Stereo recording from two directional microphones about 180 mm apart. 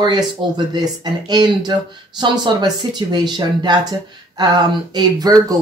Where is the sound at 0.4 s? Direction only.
30° right (ahead or behind).